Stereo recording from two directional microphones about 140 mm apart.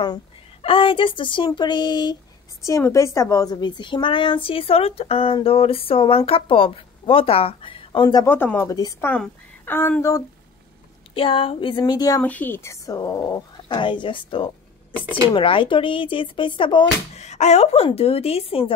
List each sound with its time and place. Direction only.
0.6 s a woman's voice: 40° left (ahead or behind)
2.6 s a woman's voice: 20° left (ahead or behind)
8.3 s speech: 15° left (ahead or behind)
9.1 s speech: 10° left (ahead or behind)
11.1 s a woman's voice: 40° left (ahead or behind)
12.2 s speech: 10° left (ahead or behind)
13.7 s a woman's voice: 35° left (ahead or behind)
17.1 s speech: 55° left (ahead or behind)